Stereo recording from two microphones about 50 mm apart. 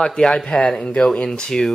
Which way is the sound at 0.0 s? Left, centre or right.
Centre.